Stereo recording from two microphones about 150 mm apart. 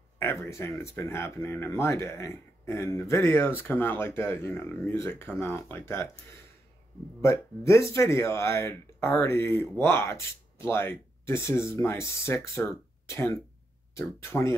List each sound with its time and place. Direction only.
0.2 s speech: 15° left (ahead or behind)
7.2 s speech: 20° left (ahead or behind)